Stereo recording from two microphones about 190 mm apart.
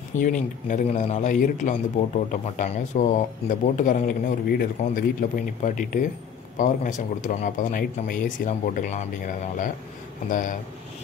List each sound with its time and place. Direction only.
0.1 s a man's voice: 45° left (ahead or behind)